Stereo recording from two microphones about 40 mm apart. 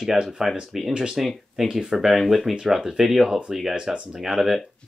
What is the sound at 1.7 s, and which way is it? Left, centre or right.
Speech, centre.